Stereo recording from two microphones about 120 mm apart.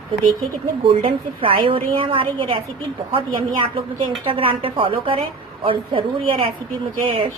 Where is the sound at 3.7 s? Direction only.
50° right (ahead or behind).